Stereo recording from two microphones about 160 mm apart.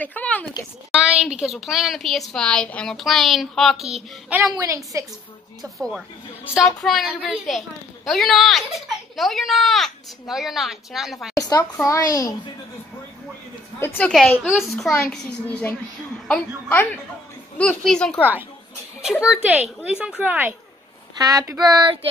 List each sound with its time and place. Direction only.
0.0 s a woman's voice: 10° left (ahead or behind)
0.9 s a child's voice: 5° right (ahead or behind)
4.4 s child singing: 20° right (ahead or behind)
5.6 s a child's voice: centre (ahead or behind)
11.3 s a sound: 25° left (ahead or behind)
11.8 s a child's voice: 20° left (ahead or behind)
13.7 s a woman's voice: 10° left (ahead or behind)
19.3 s a woman's voice: 10° right (ahead or behind)
21.2 s child singing: 20° right (ahead or behind)